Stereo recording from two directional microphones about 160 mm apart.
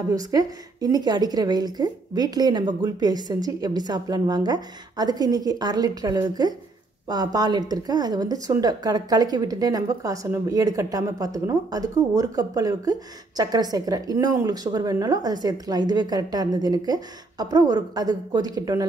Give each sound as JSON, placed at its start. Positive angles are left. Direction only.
{"t": 0.1, "sound": "a woman's voice", "side_deg": -20}